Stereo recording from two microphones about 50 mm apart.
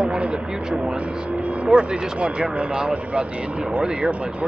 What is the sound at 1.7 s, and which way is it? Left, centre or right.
Speech, centre.